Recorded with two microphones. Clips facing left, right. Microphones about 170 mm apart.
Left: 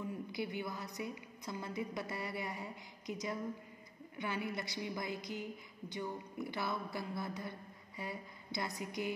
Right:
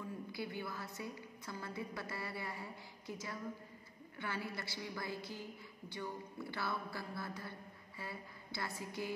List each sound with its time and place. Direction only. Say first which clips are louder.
0.0 s a woman's voice: left 3 dB; 20° left (ahead or behind)